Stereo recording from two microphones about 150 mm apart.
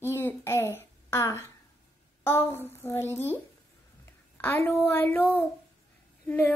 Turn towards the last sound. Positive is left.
turn(degrees=10)  # may be behind; listen again after turning